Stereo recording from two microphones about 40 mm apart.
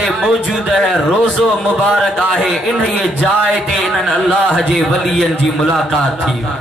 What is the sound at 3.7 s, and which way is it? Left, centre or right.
A man's voice, centre.